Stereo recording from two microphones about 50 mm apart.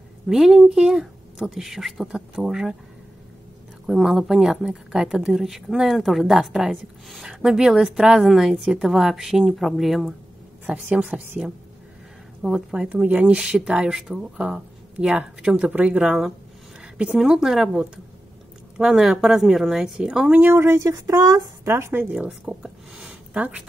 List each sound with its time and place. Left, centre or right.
0.3 s speech: centre
3.8 s speech: centre
7.2 s speech: centre
10.7 s speech: right
12.4 s speech: centre
13.0 s speech: right
16.0 s speech: centre
16.8 s a sound: centre
17.3 s speech: centre
20.5 s a woman's voice: right
22.5 s speech: centre
23.0 s a sound: right